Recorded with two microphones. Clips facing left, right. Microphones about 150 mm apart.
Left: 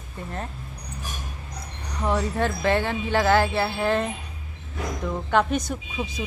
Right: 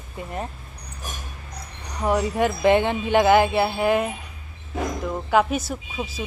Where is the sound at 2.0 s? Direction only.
15° right (ahead or behind).